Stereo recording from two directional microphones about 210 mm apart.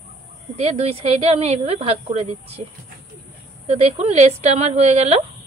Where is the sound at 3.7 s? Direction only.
30° right (ahead or behind).